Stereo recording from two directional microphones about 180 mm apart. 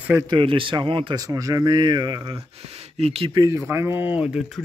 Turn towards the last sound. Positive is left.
turn(degrees=-5)  # may be behind; listen again after turning